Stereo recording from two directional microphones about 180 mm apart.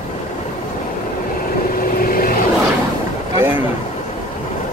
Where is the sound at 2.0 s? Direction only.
55° left (ahead or behind).